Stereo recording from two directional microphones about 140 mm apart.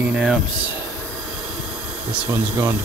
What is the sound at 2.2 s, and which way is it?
Speech, 20° right (ahead or behind).